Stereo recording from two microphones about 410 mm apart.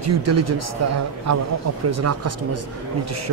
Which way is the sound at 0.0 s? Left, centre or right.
Right.